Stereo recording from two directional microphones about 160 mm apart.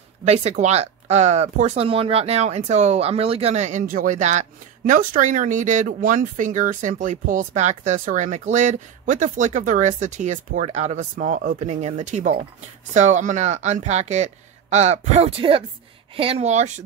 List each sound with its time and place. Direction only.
0.2 s speech: 40° right (ahead or behind)